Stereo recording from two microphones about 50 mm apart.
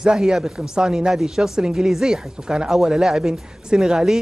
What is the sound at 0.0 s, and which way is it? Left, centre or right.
Speech, centre.